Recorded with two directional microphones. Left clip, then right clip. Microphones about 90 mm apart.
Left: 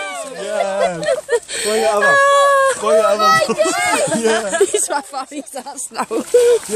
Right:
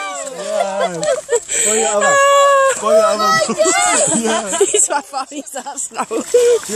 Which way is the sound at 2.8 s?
20° left (ahead or behind).